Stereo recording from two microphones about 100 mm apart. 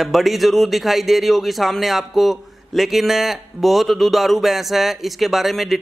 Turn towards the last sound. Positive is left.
turn(degrees=0)  # may be behind; listen again after turning